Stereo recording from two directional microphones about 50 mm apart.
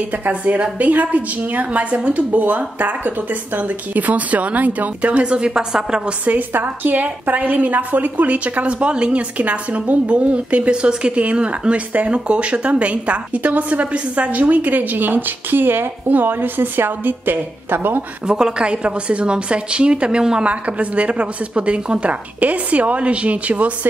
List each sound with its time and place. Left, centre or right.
0.2 s a woman's voice: right
6.2 s speech: right
18.2 s a woman's voice: centre
20.6 s a woman's voice: right
22.4 s a woman's voice: right